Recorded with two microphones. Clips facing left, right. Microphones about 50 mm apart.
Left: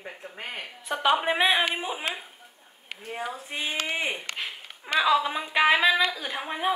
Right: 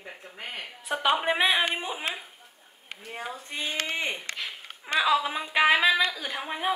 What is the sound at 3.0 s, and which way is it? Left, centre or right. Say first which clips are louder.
Speech: left 3 dB; centre.